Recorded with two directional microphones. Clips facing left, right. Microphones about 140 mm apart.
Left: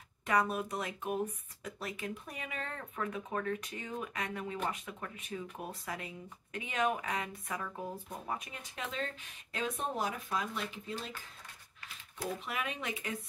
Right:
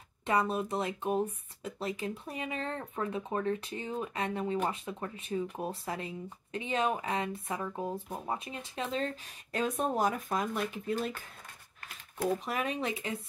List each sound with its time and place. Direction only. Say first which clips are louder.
0.3 s speech: right 2 dB; 25° right (ahead or behind)